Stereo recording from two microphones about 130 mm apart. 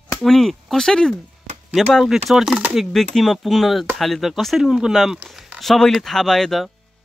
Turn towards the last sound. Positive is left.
turn(degrees=0)  # may be behind; listen again after turning